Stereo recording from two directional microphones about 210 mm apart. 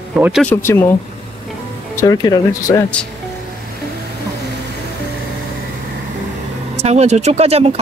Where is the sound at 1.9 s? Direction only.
15° left (ahead or behind).